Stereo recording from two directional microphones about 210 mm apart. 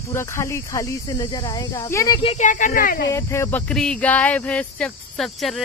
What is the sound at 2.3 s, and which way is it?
Speech, 35° left (ahead or behind).